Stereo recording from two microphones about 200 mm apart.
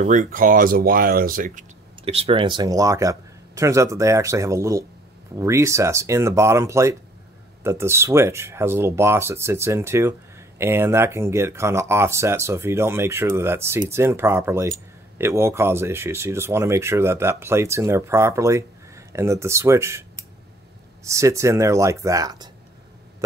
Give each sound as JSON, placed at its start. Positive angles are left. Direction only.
{"t": 0.0, "sound": "speech", "side_deg": -40}